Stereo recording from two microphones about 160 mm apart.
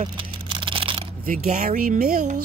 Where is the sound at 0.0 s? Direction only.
35° right (ahead or behind).